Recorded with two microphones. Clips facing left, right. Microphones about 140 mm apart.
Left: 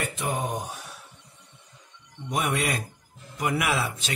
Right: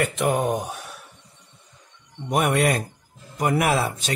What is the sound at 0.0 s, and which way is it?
Speech, 70° right (ahead or behind).